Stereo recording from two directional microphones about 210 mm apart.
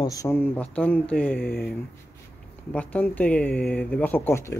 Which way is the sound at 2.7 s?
5° left (ahead or behind).